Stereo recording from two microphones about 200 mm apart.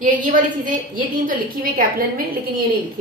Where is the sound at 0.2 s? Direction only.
40° right (ahead or behind).